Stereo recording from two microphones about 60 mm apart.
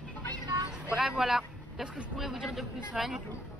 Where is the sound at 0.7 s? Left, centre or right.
Centre.